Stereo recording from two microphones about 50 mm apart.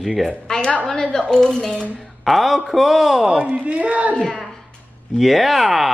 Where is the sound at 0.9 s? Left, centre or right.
Centre.